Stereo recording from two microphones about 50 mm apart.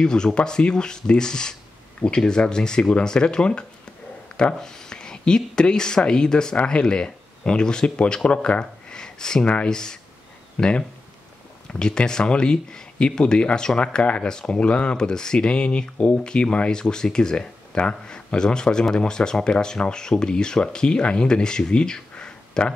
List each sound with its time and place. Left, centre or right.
0.0 s speech: centre
11.8 s speech: centre